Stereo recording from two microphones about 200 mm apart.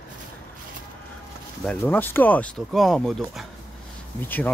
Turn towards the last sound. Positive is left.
turn(degrees=10)  # may be behind; listen again after turning